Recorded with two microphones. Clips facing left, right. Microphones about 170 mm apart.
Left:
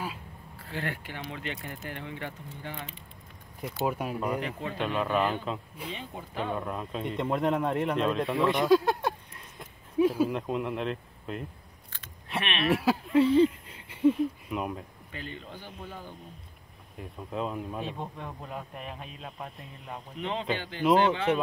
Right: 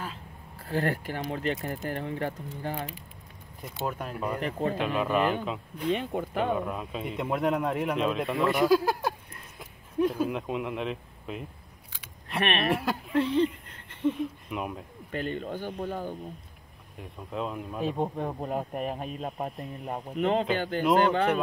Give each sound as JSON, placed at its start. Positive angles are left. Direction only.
{"t": 0.6, "sound": "speech", "side_deg": -40}
{"t": 3.8, "sound": "speech", "side_deg": 10}
{"t": 4.4, "sound": "speech", "side_deg": -40}
{"t": 4.7, "sound": "speech", "side_deg": -5}
{"t": 5.9, "sound": "speech", "side_deg": -60}
{"t": 6.5, "sound": "speech", "side_deg": -5}
{"t": 11.9, "sound": "a sound", "side_deg": -5}
{"t": 12.4, "sound": "speech", "side_deg": -50}
{"t": 12.7, "sound": "speech", "side_deg": 0}
{"t": 15.0, "sound": "speech", "side_deg": -50}
{"t": 16.9, "sound": "speech", "side_deg": 0}
{"t": 17.9, "sound": "speech", "side_deg": -40}